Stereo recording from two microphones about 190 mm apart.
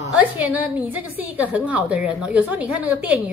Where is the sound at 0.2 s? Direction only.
10° right (ahead or behind).